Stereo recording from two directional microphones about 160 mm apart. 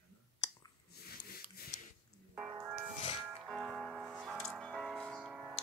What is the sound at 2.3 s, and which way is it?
Music, 15° right (ahead or behind).